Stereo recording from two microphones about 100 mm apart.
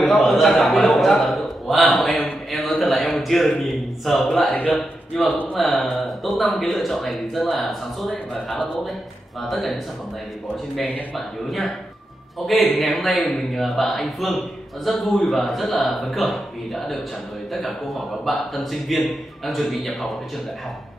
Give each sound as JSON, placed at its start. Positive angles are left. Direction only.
{"t": 0.0, "sound": "a man's voice", "side_deg": 0}
{"t": 4.5, "sound": "a man's voice", "side_deg": 15}
{"t": 5.6, "sound": "a man's voice", "side_deg": 0}
{"t": 10.8, "sound": "a man's voice", "side_deg": 15}
{"t": 11.1, "sound": "a man's voice", "side_deg": 0}